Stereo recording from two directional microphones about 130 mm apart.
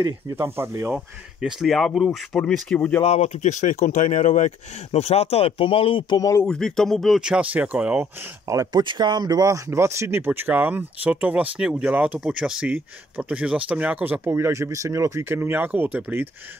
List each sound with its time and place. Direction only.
0.4 s speech: 20° right (ahead or behind)
0.9 s speech: 5° right (ahead or behind)
3.0 s speech: 55° left (ahead or behind); by 6.4 s 30° left (ahead or behind)
6.4 s speech: 5° left (ahead or behind); by 8.8 s 25° right (ahead or behind)
8.8 s speech: 35° right (ahead or behind); by 16.3 s 15° right (ahead or behind)